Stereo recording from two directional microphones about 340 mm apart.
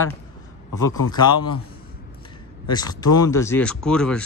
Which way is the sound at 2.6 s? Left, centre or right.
Centre.